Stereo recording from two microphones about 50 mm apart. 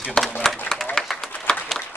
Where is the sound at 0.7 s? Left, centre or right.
Left.